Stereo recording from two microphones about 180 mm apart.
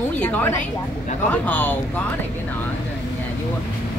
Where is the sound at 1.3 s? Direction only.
10° left (ahead or behind).